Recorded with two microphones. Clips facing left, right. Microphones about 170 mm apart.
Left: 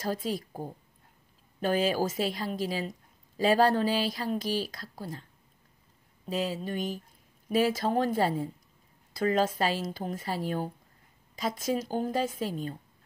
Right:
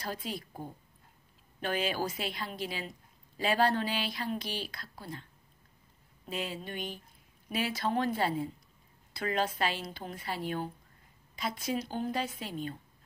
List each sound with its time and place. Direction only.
0.0 s a woman's voice: 45° left (ahead or behind)
6.3 s a woman's voice: 35° left (ahead or behind)